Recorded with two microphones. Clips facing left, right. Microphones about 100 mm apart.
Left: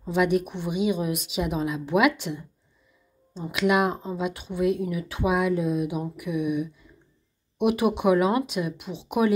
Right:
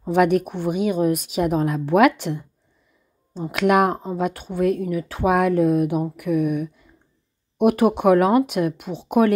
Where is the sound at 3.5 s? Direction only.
50° right (ahead or behind).